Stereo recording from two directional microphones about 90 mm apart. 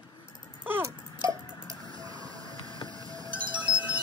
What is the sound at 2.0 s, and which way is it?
Printer, 45° right (ahead or behind).